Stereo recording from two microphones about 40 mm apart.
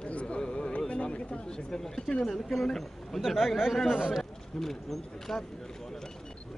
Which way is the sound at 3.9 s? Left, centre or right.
Centre.